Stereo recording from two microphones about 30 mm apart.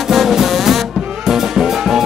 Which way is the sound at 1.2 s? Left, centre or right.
Centre.